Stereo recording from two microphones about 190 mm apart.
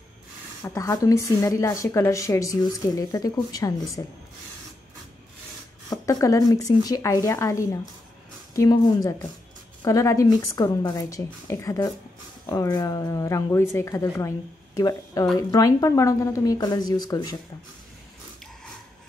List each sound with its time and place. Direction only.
0.7 s speech: 15° left (ahead or behind)
5.9 s speech: 20° left (ahead or behind)